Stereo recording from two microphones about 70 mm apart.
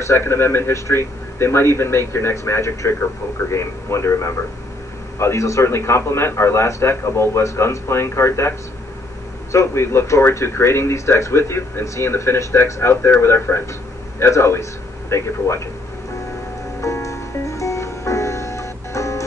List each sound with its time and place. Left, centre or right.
0.0 s a man's voice: left
16.8 s music: left